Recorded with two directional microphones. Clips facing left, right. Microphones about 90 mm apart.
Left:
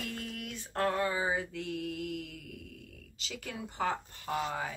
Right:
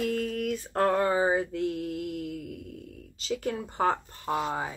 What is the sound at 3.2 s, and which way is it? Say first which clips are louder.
Speech: right 11 dB; 40° right (ahead or behind).